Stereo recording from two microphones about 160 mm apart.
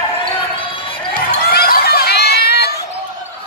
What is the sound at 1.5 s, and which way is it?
Chatter, 75° left (ahead or behind).